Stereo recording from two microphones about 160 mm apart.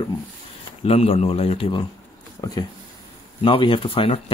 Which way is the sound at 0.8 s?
40° left (ahead or behind).